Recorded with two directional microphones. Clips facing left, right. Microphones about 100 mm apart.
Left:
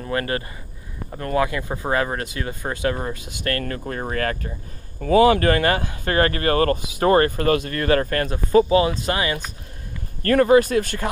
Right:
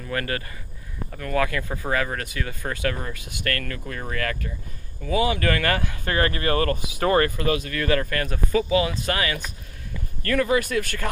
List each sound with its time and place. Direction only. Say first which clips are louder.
0.0 s speech: left 4 dB; 30° left (ahead or behind)
5.0 s speech: left 8 dB; 55° left (ahead or behind)
5.4 s speech: left 4 dB; 30° left (ahead or behind)
10.2 s speech: left 7 dB; 40° left (ahead or behind)